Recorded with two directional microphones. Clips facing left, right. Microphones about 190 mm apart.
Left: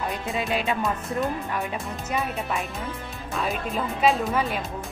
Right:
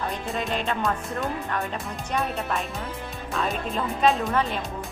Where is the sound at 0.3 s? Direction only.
5° left (ahead or behind).